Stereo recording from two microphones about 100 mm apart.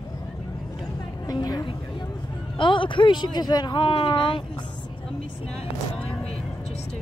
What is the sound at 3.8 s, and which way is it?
Speech, 60° left (ahead or behind).